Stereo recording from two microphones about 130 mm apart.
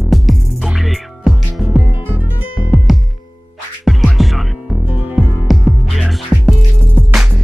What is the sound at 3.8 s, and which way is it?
Music, centre (ahead or behind).